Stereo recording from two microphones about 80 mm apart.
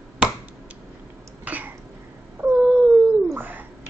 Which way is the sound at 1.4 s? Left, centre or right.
Right.